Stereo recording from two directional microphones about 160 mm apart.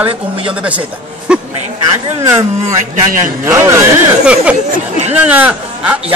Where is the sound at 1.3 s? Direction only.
5° right (ahead or behind).